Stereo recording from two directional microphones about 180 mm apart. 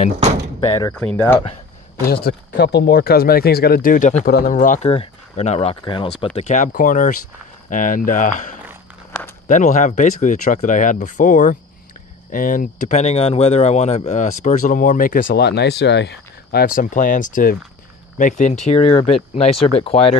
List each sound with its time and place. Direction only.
0.9 s speech: 10° left (ahead or behind)
2.0 s speech: 60° left (ahead or behind); by 6.0 s 25° left (ahead or behind)
6.3 s speech: 45° left (ahead or behind)
15.2 s speech: 65° left (ahead or behind)
16.6 s speech: 50° left (ahead or behind)
18.9 s speech: 25° left (ahead or behind)
19.1 s speech: 35° left (ahead or behind)